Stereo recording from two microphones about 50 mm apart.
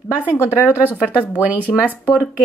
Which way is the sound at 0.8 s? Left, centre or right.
Left.